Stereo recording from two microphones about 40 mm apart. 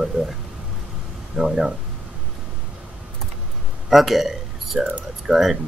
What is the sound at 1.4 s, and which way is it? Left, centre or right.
Speech, centre.